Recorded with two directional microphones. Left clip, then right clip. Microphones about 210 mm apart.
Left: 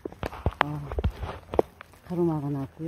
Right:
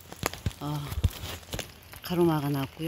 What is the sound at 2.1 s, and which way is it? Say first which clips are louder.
Speech: right 2 dB; 20° right (ahead or behind).